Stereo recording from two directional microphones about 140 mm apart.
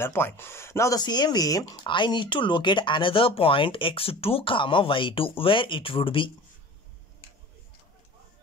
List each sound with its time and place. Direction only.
0.0 s speech: 15° left (ahead or behind); by 6.3 s 40° left (ahead or behind)